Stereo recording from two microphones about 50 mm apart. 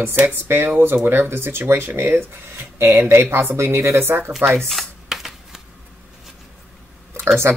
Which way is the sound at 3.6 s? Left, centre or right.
Right.